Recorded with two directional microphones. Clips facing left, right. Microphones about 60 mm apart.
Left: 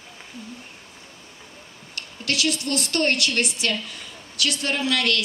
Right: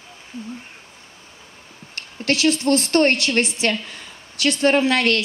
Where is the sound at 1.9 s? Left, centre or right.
Right.